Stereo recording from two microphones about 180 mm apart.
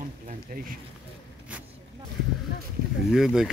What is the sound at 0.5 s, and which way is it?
Speech, 50° right (ahead or behind).